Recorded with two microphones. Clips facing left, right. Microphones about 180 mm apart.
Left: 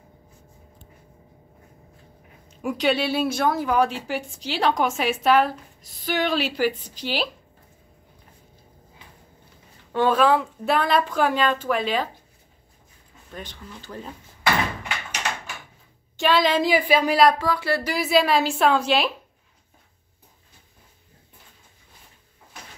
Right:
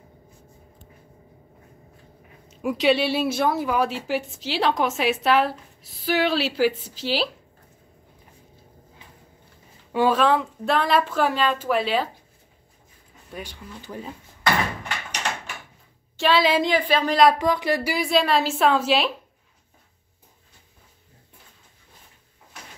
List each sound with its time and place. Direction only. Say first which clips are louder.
2.6 s a woman's voice: right 2 dB; centre (ahead or behind)
9.9 s a woman's voice: even; centre (ahead or behind)
13.3 s speech: right 1 dB; 10° right (ahead or behind)
16.2 s a woman's voice: even; centre (ahead or behind)
16.6 s a woman's voice: left 2 dB; 10° left (ahead or behind)
17.4 s speech: right 2 dB; 20° right (ahead or behind)
17.9 s a woman's voice: left 3 dB; centre (ahead or behind)